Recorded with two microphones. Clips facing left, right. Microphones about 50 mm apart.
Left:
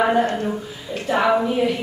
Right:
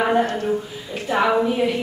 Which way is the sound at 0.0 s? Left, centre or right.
Centre.